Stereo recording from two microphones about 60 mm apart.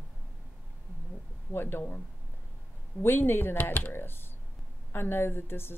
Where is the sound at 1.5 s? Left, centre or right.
Left.